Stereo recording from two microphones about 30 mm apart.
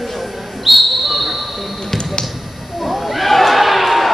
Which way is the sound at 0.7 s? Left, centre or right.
Centre.